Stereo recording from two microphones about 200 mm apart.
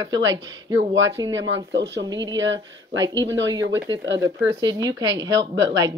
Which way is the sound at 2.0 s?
20° right (ahead or behind).